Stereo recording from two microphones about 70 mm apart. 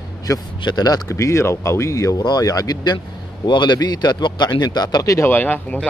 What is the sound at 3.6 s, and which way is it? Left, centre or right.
Speech, left.